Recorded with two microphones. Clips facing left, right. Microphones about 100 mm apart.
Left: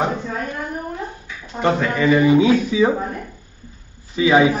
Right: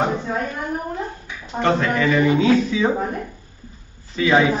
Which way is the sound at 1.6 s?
10° left (ahead or behind).